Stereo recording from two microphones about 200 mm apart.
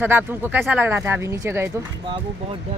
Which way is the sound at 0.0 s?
10° right (ahead or behind).